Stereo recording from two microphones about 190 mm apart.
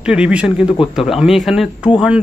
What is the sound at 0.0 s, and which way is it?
Speech, 5° right (ahead or behind).